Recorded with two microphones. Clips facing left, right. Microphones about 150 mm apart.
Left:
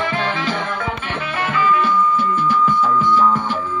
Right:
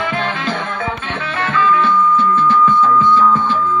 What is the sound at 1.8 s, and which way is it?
Music, 60° right (ahead or behind).